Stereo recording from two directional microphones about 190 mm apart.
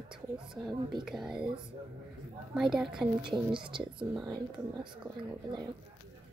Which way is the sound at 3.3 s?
25° right (ahead or behind).